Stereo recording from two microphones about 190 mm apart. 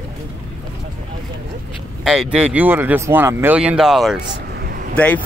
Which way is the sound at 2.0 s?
5° right (ahead or behind).